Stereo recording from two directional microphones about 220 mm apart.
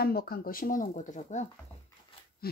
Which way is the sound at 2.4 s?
45° left (ahead or behind).